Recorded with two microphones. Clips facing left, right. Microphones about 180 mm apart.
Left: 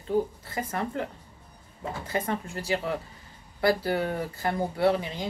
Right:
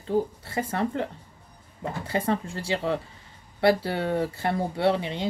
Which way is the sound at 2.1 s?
30° right (ahead or behind).